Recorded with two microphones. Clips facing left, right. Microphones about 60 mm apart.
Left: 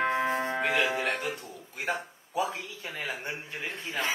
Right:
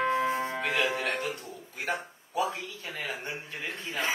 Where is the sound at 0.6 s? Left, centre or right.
Centre.